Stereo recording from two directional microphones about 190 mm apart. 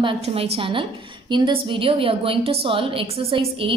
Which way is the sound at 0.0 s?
30° right (ahead or behind).